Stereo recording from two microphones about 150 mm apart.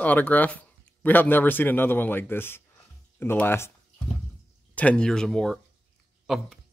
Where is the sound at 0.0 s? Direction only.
10° left (ahead or behind).